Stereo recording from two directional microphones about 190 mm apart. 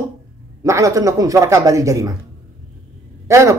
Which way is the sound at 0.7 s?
15° right (ahead or behind).